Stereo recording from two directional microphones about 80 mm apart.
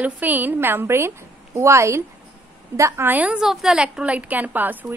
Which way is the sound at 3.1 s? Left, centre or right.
Centre.